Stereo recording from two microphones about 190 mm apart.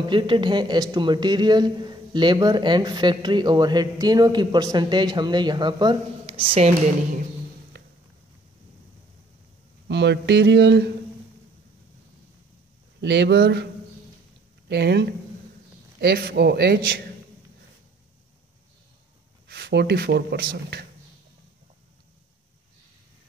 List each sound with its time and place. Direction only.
0.1 s a man's voice: 25° right (ahead or behind)
7.7 s a sound: 65° right (ahead or behind)
9.8 s speech: 65° right (ahead or behind)
13.0 s speech: 65° right (ahead or behind)
14.7 s speech: 60° right (ahead or behind)
19.4 s speech: 60° right (ahead or behind)